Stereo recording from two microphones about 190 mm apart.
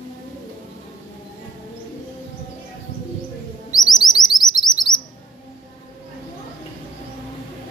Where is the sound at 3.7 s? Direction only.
20° left (ahead or behind).